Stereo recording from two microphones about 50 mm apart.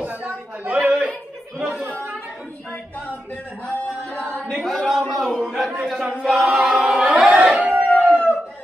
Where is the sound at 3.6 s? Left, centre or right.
Left.